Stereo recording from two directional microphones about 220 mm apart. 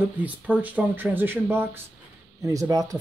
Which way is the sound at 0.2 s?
5° right (ahead or behind).